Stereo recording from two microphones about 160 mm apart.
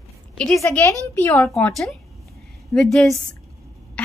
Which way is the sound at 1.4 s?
5° left (ahead or behind).